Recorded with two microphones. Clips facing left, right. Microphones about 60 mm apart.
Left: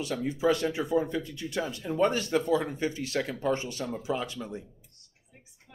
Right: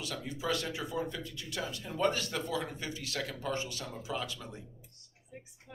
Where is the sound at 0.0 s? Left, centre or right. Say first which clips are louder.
Left 10 dB; left.